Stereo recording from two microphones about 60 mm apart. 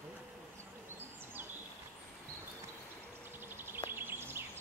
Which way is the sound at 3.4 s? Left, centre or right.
Right.